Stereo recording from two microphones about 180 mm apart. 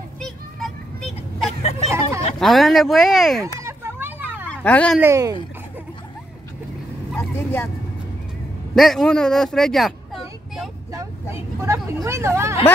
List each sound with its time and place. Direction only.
0.2 s children playing: centre (ahead or behind)
1.6 s vehicle: 35° left (ahead or behind)
1.9 s a sound: 15° right (ahead or behind)
2.3 s speech: centre (ahead or behind)
3.5 s children playing: 15° right (ahead or behind)
4.5 s speech: 5° left (ahead or behind)
5.0 s speech: 20° right (ahead or behind)
7.2 s speech: 10° left (ahead or behind)
8.7 s speech: centre (ahead or behind)
10.9 s vehicle: 15° right (ahead or behind)